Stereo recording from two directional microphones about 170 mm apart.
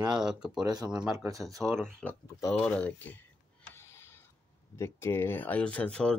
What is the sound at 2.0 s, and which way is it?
Speech, 5° left (ahead or behind).